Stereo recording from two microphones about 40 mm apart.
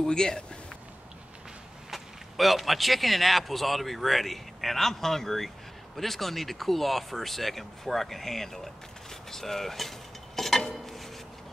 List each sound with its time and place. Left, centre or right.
0.0 s speech: centre
1.9 s speech: centre
9.1 s a sound: centre